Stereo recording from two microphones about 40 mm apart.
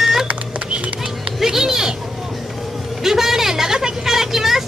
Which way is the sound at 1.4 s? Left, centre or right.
Centre.